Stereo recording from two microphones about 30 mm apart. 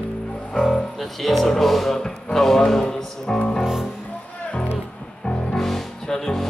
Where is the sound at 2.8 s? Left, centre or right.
Left.